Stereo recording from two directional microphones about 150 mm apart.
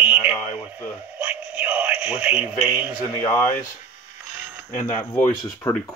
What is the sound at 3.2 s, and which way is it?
Speech, 10° left (ahead or behind).